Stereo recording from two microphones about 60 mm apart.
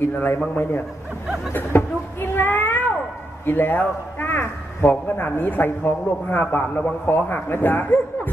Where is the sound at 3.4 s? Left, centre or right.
Left.